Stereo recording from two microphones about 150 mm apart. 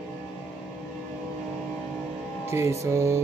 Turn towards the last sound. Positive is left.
turn(degrees=-20)  # may be behind; listen again after turning